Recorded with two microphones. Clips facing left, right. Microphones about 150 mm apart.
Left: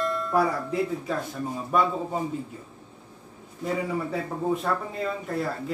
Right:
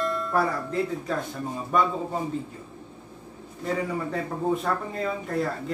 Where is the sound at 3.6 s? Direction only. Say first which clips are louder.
Even; 5° left (ahead or behind).